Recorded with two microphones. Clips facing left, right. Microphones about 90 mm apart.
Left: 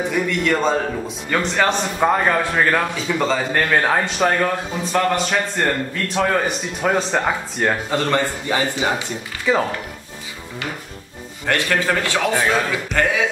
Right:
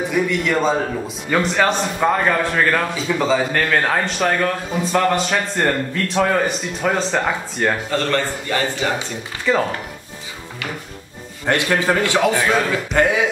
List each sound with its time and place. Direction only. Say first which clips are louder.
0.1 s a man's voice: right 2 dB; centre (ahead or behind)
3.1 s a man's voice: right 3 dB; centre (ahead or behind)
7.9 s a man's voice: left 1 dB; 15° left (ahead or behind)
9.5 s a man's voice: even; 5° left (ahead or behind)
11.4 s a man's voice: right 2 dB; 20° right (ahead or behind)